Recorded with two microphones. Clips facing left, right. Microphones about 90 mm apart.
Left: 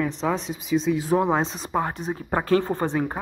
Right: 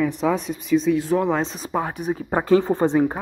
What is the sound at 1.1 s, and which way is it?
Speech, 20° left (ahead or behind).